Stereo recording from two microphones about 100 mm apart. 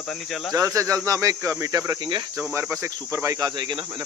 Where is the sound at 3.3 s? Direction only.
45° right (ahead or behind).